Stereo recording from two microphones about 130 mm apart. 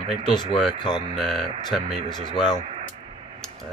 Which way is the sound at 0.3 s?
35° left (ahead or behind).